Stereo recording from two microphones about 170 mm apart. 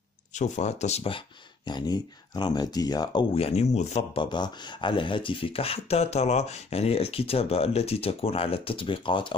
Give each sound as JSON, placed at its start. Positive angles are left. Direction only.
{"t": 0.3, "sound": "speech", "side_deg": 45}
{"t": 4.2, "sound": "speech", "side_deg": 25}